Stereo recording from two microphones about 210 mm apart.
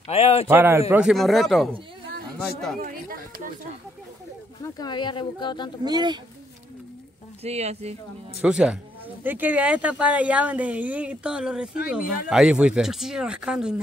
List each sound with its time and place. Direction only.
0.1 s speech: 30° left (ahead or behind)
0.5 s speech: 10° right (ahead or behind)
1.0 s speech: centre (ahead or behind)
2.8 s speech: 45° right (ahead or behind)
4.7 s speech: 20° left (ahead or behind)
5.9 s speech: 20° right (ahead or behind)
7.4 s speech: 30° right (ahead or behind)
8.4 s speech: 5° right (ahead or behind)